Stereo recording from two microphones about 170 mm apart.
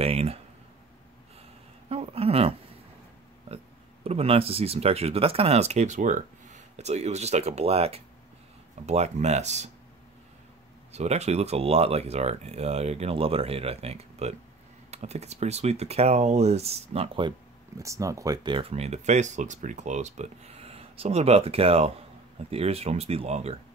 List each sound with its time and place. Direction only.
0.0 s speech: 35° right (ahead or behind)
1.9 s a sound: 35° right (ahead or behind)
4.0 s speech: 35° right (ahead or behind)
10.9 s speech: 40° right (ahead or behind)
17.7 s speech: 20° right (ahead or behind); by 23.5 s 40° right (ahead or behind)